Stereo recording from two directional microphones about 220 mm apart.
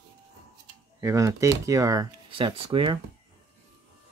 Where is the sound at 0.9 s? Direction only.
15° right (ahead or behind).